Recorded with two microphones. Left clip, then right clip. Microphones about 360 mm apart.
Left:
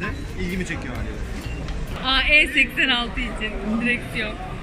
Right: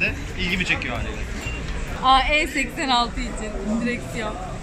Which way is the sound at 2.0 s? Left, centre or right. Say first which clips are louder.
Even; centre.